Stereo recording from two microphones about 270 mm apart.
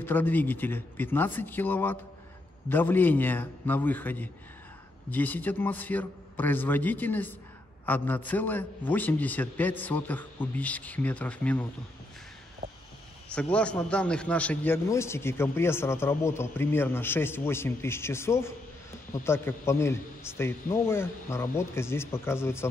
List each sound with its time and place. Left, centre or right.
0.0 s a man's voice: centre
12.6 s a sound: right
13.3 s a man's voice: centre